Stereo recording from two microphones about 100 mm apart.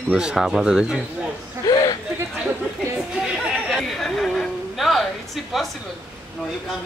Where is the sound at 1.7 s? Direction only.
40° left (ahead or behind).